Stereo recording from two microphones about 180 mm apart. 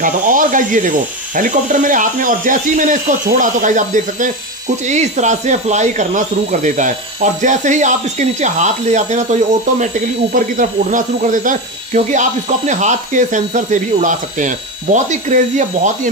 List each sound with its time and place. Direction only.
0.0 s speech: 45° right (ahead or behind)